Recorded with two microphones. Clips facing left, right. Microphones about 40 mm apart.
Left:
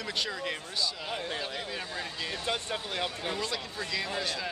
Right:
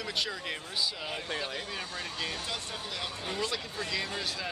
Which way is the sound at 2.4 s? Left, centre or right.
Left.